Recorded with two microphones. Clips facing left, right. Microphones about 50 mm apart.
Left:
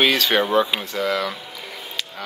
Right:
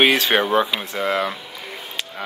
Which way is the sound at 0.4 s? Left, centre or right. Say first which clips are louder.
Even; centre.